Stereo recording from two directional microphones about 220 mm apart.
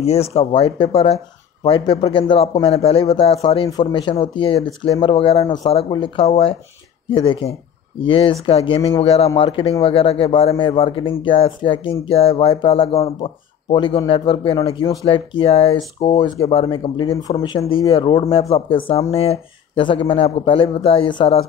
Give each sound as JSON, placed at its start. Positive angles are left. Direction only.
{"t": 0.0, "sound": "speech", "side_deg": 30}